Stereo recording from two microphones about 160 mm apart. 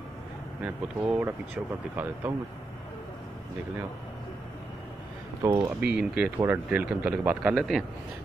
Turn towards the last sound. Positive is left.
turn(degrees=0)  # may be behind; listen again after turning